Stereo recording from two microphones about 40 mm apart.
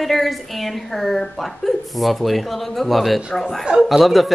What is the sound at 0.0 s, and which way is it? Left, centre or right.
Speech, centre.